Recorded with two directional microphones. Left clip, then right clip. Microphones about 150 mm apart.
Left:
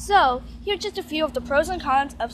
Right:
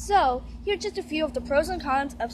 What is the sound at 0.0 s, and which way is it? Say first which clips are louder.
A woman's voice: left 4 dB; centre (ahead or behind).